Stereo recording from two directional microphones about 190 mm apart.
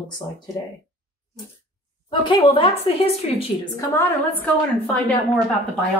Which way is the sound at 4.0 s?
10° left (ahead or behind).